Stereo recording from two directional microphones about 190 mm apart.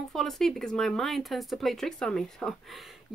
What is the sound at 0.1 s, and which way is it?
Speech, centre (ahead or behind).